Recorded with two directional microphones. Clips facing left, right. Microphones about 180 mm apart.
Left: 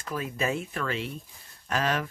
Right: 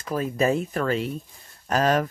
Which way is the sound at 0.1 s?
40° right (ahead or behind).